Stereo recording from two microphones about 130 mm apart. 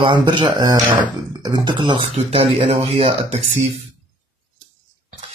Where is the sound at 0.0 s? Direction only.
40° right (ahead or behind); by 3.6 s 55° right (ahead or behind).